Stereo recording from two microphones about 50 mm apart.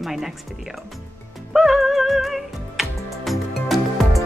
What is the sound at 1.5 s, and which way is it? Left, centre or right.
Music, centre.